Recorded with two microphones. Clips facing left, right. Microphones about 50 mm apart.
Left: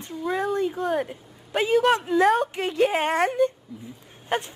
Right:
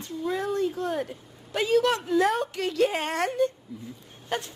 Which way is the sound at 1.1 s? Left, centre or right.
Left.